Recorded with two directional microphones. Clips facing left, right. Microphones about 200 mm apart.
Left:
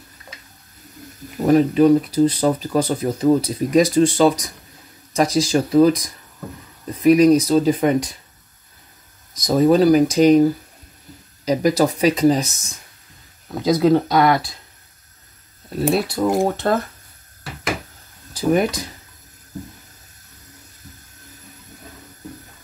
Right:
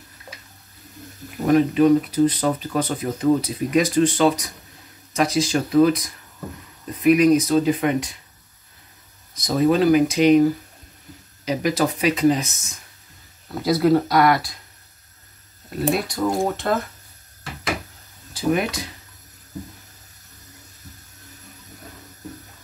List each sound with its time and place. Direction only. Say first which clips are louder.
1.5 s speech: left 2 dB; 35° left (ahead or behind)
7.0 s speech: left 3 dB; 35° left (ahead or behind)
9.4 s speech: left 4 dB; 40° left (ahead or behind)
11.4 s speech: left 4 dB; 40° left (ahead or behind)
13.6 s speech: left 2 dB; 20° left (ahead or behind)
15.9 s speech: left 3 dB; 25° left (ahead or behind)
16.6 s speech: left 3 dB; 40° left (ahead or behind)
18.3 s speech: left 4 dB; 40° left (ahead or behind)